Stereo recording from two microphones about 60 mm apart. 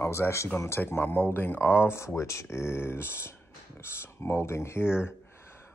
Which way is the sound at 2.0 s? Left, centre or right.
Left.